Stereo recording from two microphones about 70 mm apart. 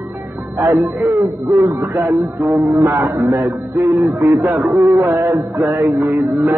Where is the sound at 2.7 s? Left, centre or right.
Right.